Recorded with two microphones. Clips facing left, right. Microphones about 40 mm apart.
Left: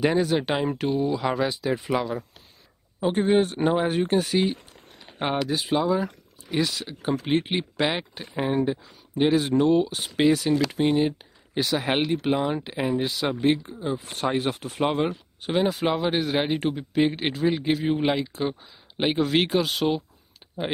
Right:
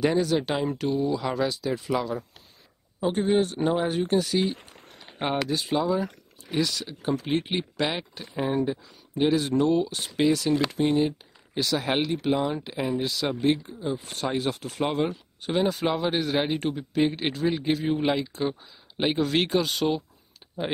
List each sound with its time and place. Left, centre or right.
0.0 s speech: centre
15.4 s speech: centre